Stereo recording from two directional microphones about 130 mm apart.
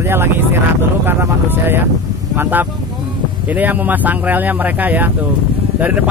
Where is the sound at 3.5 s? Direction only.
15° right (ahead or behind).